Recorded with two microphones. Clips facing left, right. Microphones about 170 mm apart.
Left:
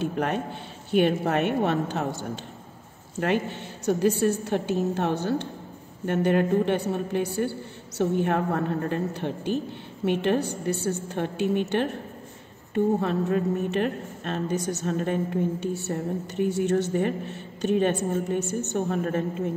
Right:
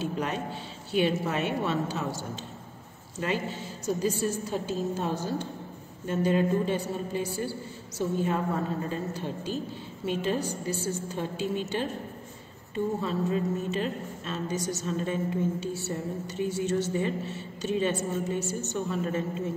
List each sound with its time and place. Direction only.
0.0 s a woman's voice: 55° left (ahead or behind)